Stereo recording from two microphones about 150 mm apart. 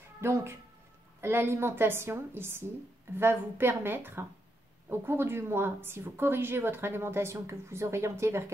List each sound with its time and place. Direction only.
0.2 s a woman's voice: 20° right (ahead or behind)